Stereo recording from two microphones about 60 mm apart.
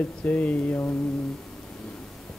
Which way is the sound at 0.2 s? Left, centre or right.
Left.